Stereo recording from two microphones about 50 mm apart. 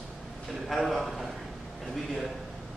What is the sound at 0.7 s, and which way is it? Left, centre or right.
Speech, centre.